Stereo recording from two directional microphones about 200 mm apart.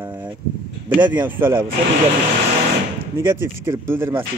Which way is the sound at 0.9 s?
10° right (ahead or behind).